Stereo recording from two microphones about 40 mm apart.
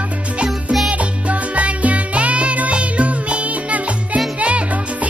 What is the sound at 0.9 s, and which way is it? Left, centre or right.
Music, right.